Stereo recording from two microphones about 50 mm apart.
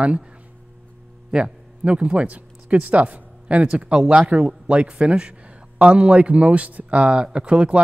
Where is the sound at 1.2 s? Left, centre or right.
Right.